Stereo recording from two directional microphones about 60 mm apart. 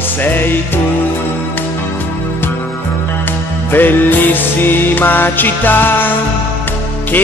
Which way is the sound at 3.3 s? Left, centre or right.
Left.